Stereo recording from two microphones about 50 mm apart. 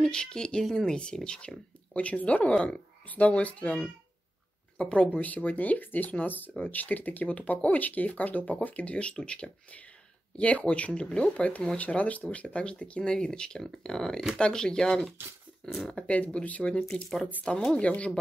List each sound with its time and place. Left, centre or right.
0.0 s speech: centre
5.1 s speech: left; by 16.1 s centre
16.4 s speech: left